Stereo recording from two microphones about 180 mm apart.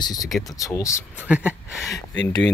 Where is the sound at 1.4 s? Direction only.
10° left (ahead or behind).